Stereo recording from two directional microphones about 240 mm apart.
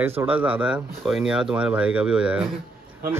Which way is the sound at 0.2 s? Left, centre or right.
Centre.